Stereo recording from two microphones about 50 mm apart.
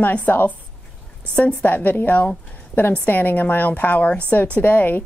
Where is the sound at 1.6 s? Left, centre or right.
Left.